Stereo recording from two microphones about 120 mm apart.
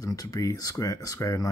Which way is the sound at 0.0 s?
30° left (ahead or behind).